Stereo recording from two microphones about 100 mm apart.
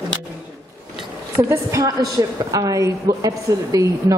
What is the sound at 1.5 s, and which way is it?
A woman's voice, 35° right (ahead or behind).